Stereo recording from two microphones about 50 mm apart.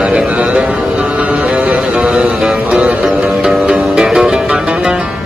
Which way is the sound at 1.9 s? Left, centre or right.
Centre.